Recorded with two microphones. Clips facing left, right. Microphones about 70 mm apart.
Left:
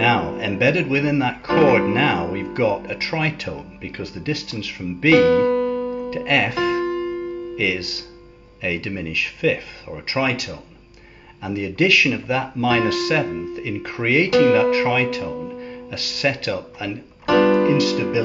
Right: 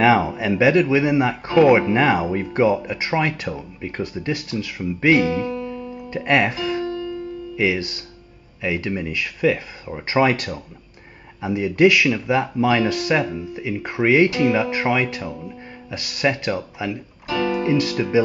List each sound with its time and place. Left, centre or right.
0.0 s speech: right
5.2 s music: left
6.0 s speech: right
6.5 s music: left
7.5 s speech: right
10.0 s speech: right
11.4 s speech: right
17.3 s music: left
17.7 s speech: right